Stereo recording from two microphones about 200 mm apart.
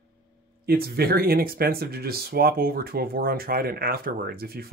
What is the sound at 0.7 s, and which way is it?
Speech, 50° right (ahead or behind).